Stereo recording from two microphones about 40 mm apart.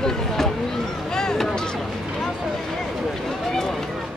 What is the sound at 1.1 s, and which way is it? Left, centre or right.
Vehicle, centre.